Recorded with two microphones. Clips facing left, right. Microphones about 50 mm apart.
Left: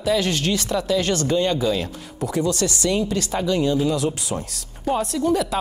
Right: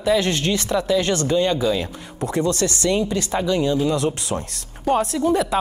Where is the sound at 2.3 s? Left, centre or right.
Right.